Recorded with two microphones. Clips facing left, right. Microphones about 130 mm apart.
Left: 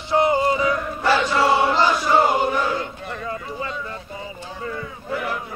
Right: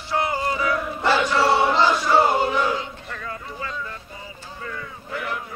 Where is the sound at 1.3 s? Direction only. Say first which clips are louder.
Left 1 dB; 10° left (ahead or behind).